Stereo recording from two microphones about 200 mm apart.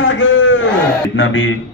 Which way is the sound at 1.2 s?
70° left (ahead or behind).